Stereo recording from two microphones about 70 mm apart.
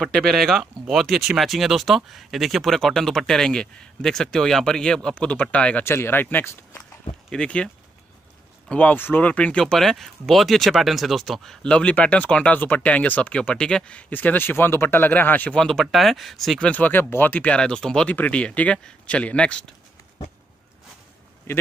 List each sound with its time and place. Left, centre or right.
0.0 s speech: centre
5.9 s speech: left
7.2 s speech: centre
11.6 s speech: centre
14.1 s speech: left
15.5 s speech: centre
16.6 s speech: left
17.6 s speech: centre